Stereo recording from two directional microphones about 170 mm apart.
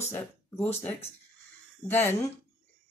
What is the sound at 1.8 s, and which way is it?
Speech, 15° left (ahead or behind).